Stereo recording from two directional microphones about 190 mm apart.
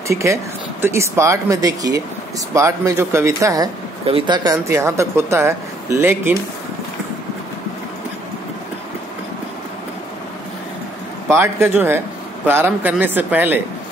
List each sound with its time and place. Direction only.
0.1 s speech: 15° right (ahead or behind)
11.2 s speech: 15° right (ahead or behind)